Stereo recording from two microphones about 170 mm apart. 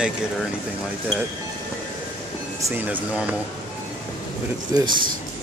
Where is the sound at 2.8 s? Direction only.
10° right (ahead or behind).